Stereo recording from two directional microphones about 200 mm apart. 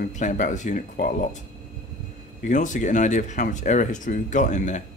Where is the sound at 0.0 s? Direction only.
40° left (ahead or behind).